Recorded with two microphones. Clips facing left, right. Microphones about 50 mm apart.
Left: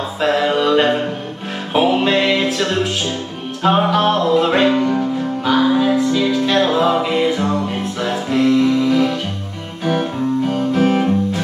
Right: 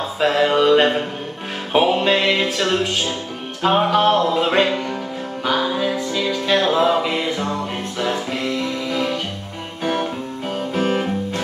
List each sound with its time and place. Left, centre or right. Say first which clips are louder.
0.2 s music: even; centre
3.6 s music: left 1 dB; centre
4.7 s music: left 8 dB; centre
5.5 s music: left 6 dB; centre
10.5 s music: left 1 dB; centre